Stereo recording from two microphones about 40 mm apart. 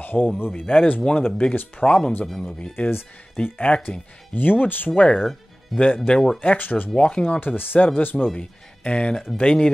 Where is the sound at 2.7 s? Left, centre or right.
Left.